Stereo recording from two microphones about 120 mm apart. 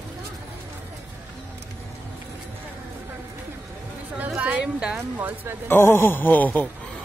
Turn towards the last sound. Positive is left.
turn(degrees=15)  # may be behind; listen again after turning